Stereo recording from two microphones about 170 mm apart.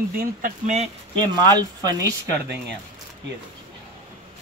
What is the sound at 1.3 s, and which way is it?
Speech, 20° right (ahead or behind).